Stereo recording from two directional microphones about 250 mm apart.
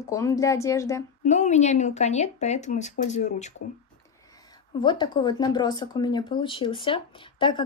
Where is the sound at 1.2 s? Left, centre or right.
Left.